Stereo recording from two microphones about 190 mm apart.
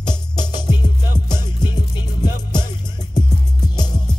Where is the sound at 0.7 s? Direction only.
20° left (ahead or behind).